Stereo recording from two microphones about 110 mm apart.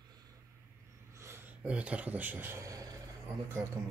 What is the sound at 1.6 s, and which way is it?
Speech, 10° right (ahead or behind).